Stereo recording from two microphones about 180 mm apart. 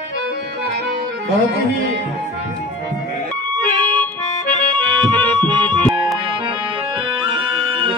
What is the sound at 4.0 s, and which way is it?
Accordion, 10° left (ahead or behind).